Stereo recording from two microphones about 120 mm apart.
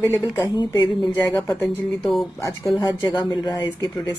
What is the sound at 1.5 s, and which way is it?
Speech, 5° left (ahead or behind).